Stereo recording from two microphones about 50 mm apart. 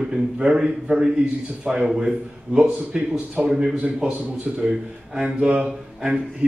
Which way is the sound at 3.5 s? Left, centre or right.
Centre.